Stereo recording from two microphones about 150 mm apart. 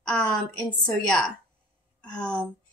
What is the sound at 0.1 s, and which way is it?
A woman's voice, 5° left (ahead or behind).